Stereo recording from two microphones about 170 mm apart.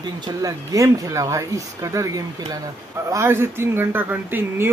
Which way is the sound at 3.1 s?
15° right (ahead or behind).